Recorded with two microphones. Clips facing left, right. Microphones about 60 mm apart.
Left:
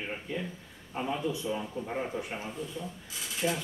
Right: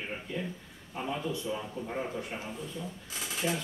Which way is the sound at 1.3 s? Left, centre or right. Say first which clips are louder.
Left 1 dB; centre.